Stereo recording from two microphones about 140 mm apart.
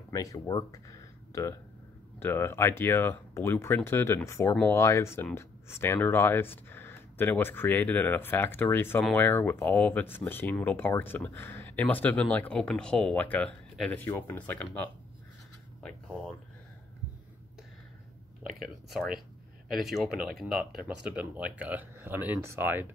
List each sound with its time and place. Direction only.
0.1 s speech: 25° left (ahead or behind)
18.6 s speech: centre (ahead or behind)